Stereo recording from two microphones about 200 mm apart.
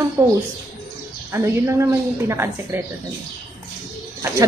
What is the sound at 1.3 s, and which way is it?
A woman's voice, 15° right (ahead or behind).